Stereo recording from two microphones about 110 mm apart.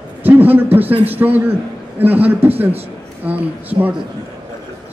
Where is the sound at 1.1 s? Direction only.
15° right (ahead or behind).